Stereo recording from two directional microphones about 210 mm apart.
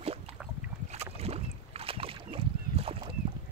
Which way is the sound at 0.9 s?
30° right (ahead or behind).